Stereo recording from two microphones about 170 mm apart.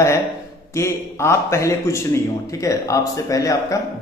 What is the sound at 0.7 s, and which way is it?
A man's voice, 15° left (ahead or behind).